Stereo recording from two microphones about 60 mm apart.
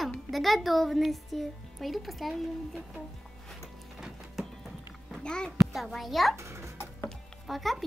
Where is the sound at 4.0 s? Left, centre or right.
Centre.